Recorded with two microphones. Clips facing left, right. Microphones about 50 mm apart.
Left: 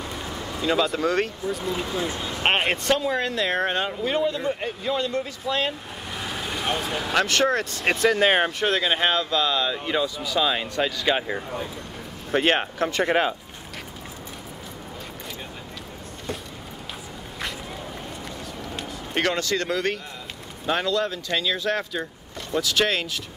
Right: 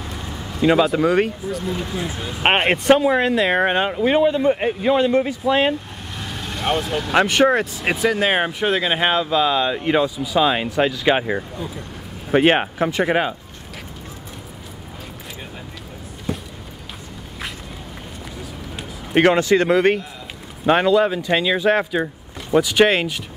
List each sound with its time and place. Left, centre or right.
0.0 s a sound: centre
0.8 s speech: centre
1.5 s speech: centre
2.4 s speech: right
6.1 s vehicle: centre
7.2 s speech: centre
16.3 s a sound: centre
19.2 s speech: right